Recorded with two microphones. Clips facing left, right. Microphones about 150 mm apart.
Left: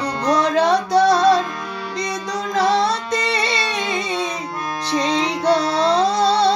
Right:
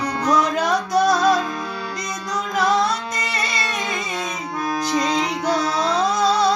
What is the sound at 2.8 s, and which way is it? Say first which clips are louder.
Music: left 4 dB; 30° left (ahead or behind).